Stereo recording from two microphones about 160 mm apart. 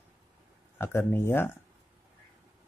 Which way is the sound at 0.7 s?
15° left (ahead or behind).